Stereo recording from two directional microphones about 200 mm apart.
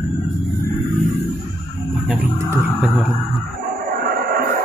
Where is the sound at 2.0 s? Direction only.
10° right (ahead or behind).